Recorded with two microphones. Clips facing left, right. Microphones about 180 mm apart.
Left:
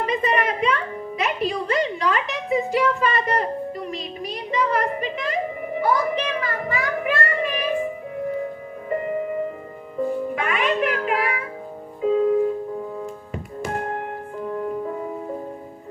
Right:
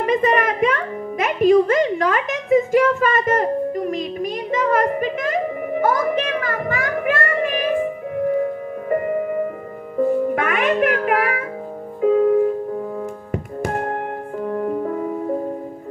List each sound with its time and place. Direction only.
0.0 s music: 50° right (ahead or behind)
10.3 s music: 50° right (ahead or behind)